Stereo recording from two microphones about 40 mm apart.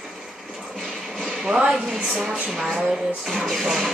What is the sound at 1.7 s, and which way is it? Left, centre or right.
Speech, centre.